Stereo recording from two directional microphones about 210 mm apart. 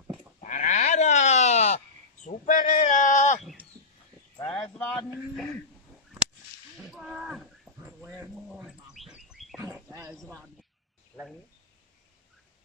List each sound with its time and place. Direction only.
0.4 s sheep: 35° left (ahead or behind)
2.2 s speech: 40° left (ahead or behind)
4.4 s a man's voice: 5° left (ahead or behind)
6.8 s a sound: centre (ahead or behind)
10.1 s a man's voice: centre (ahead or behind)